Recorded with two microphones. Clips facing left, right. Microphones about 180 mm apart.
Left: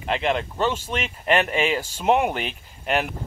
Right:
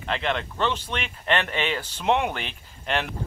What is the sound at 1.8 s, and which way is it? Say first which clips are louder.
Speech: left 3 dB; 10° left (ahead or behind).